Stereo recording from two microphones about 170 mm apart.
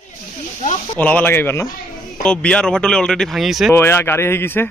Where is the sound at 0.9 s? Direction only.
10° left (ahead or behind).